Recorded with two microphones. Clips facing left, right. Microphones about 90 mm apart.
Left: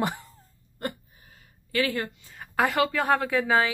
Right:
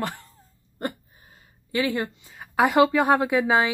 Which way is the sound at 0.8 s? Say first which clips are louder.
Right 3 dB; 20° right (ahead or behind).